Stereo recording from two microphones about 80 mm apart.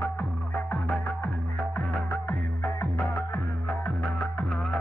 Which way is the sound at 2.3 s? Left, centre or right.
Left.